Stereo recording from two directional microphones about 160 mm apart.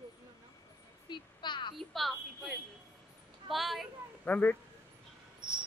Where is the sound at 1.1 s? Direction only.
30° left (ahead or behind).